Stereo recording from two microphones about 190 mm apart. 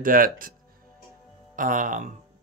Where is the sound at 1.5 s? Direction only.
45° right (ahead or behind).